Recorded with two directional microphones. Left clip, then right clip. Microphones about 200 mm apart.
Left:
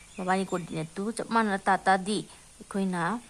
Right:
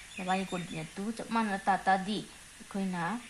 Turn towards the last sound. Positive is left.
turn(degrees=25)  # may be behind; listen again after turning